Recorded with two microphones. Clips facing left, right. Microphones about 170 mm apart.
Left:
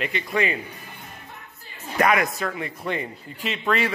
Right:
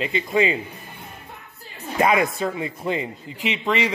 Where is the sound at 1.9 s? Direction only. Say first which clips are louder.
Right 2 dB; 25° right (ahead or behind).